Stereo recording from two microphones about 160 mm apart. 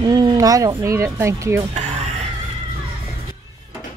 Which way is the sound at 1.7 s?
45° right (ahead or behind).